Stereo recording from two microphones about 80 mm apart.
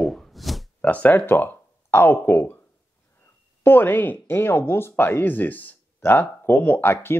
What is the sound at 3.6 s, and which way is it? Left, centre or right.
Speech, left.